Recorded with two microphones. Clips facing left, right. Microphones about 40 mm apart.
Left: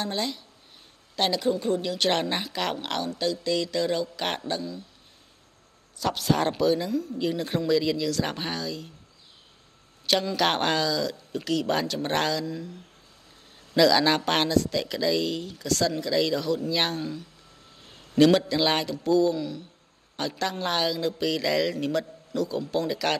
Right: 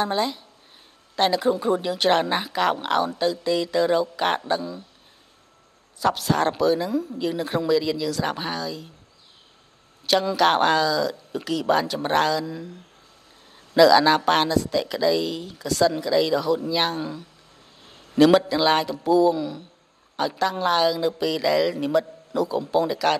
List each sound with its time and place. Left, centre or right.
0.0 s speech: centre
5.9 s a woman's voice: centre
10.0 s a woman's voice: centre
13.7 s a woman's voice: centre
18.1 s a man's voice: centre